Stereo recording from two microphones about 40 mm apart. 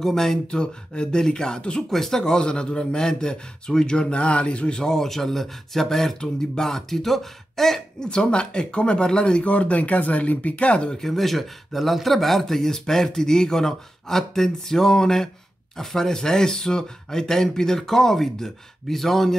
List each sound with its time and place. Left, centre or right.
0.0 s speech: centre
0.5 s a man's voice: left
1.9 s speech: centre
2.2 s a man's voice: centre
8.0 s a man's voice: left
10.9 s speech: centre